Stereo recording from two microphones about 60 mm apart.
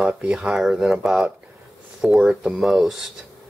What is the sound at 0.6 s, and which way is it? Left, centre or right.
Speech, centre.